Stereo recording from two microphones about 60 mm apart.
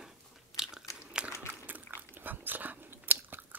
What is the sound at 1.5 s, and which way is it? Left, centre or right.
Biting, right.